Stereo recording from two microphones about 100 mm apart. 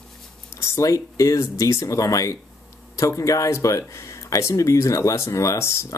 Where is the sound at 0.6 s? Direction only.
30° left (ahead or behind).